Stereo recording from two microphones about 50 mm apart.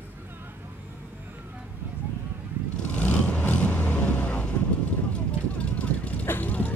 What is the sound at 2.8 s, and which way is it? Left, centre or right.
Vehicle, left.